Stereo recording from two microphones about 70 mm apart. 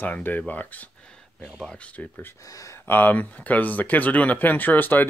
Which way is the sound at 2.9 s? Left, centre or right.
Left.